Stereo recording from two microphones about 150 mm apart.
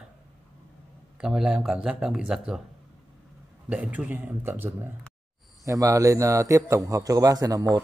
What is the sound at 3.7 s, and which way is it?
A man's voice, 10° right (ahead or behind).